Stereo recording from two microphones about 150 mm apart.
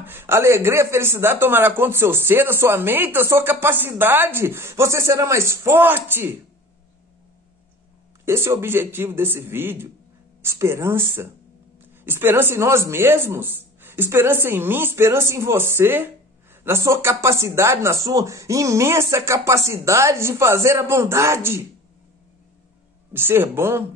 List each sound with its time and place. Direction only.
0.0 s speech: 15° right (ahead or behind)
8.3 s speech: 15° right (ahead or behind)
23.1 s speech: 15° right (ahead or behind)